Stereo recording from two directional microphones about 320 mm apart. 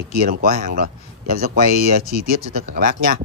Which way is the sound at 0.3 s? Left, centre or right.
Right.